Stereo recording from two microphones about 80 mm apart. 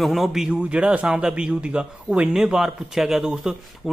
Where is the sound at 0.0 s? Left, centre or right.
Centre.